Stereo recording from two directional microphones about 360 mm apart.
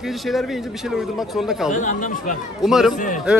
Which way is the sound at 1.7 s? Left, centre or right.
Left.